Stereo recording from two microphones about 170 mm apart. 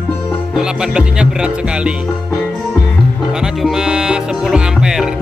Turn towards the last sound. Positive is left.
turn(degrees=-5)  # may be behind; listen again after turning